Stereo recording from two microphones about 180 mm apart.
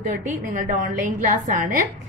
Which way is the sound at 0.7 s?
45° right (ahead or behind).